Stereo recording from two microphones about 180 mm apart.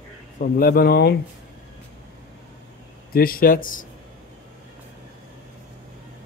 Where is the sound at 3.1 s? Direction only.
55° left (ahead or behind).